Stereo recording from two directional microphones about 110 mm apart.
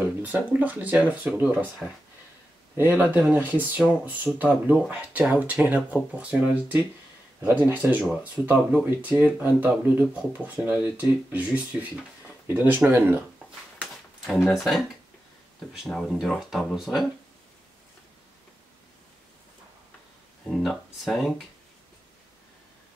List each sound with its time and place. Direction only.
0.0 s speech: 15° right (ahead or behind)
2.8 s speech: 10° right (ahead or behind)
14.5 s speech: centre (ahead or behind)
20.4 s speech: 5° left (ahead or behind)